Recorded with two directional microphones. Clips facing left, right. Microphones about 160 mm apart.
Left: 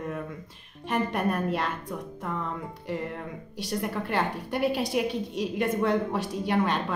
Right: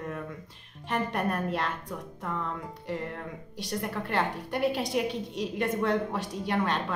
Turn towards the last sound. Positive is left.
turn(degrees=10)  # may be behind; listen again after turning